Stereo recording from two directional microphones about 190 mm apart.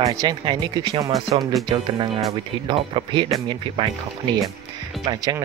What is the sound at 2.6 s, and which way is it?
Speech, 25° right (ahead or behind).